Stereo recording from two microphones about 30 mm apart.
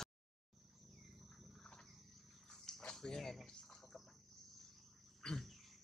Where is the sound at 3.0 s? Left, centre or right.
Left.